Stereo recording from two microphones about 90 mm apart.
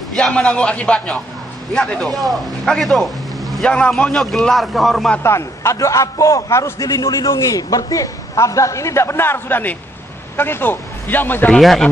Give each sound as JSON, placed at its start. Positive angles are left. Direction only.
{"t": 0.1, "sound": "a man's voice", "side_deg": 10}
{"t": 5.2, "sound": "a man's voice", "side_deg": 30}
{"t": 7.0, "sound": "a man's voice", "side_deg": 45}
{"t": 11.5, "sound": "a man's voice", "side_deg": 5}